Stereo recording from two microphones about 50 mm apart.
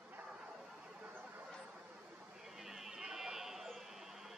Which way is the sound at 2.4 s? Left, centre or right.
Centre.